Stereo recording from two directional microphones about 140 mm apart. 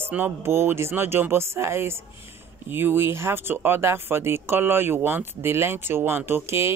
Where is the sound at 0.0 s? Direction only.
15° right (ahead or behind).